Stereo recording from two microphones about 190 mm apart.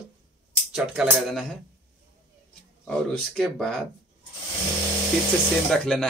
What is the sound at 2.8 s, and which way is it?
Speech, 5° left (ahead or behind).